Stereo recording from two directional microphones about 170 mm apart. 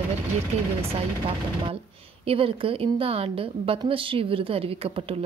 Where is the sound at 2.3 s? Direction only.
35° right (ahead or behind).